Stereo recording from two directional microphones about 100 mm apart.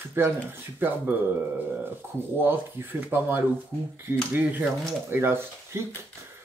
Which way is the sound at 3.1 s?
20° right (ahead or behind).